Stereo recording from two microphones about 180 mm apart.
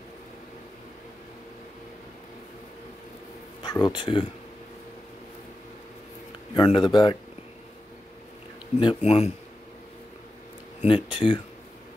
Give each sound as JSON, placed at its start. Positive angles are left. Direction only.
{"t": 3.6, "sound": "speech", "side_deg": 20}
{"t": 6.5, "sound": "speech", "side_deg": 25}
{"t": 8.7, "sound": "speech", "side_deg": 35}
{"t": 10.9, "sound": "speech", "side_deg": 25}